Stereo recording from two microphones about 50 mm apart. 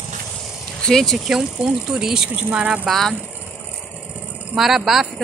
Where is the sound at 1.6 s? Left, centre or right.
Centre.